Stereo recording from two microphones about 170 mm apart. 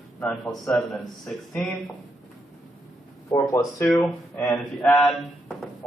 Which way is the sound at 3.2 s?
15° left (ahead or behind).